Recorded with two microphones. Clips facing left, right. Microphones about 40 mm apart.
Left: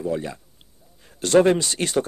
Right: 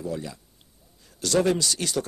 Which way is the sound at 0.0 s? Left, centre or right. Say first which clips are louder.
Left 6 dB; left.